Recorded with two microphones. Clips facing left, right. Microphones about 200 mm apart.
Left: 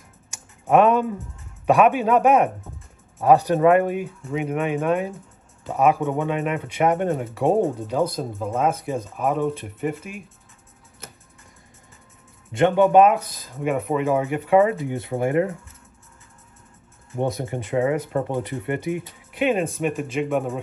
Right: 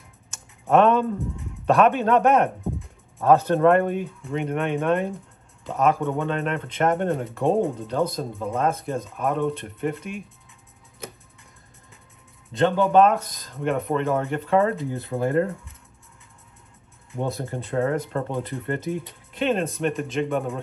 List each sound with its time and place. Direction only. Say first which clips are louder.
0.3 s typing: left 1 dB; 10° left (ahead or behind)
1.7 s speech: left 1 dB; 10° left (ahead or behind)
12.8 s speech: left 3 dB; 5° left (ahead or behind)
17.3 s speech: left 3 dB; 20° left (ahead or behind); by 20.6 s centre (ahead or behind)